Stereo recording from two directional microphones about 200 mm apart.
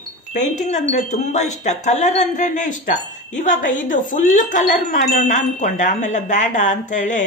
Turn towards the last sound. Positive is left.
turn(degrees=40)  # may be behind; listen again after turning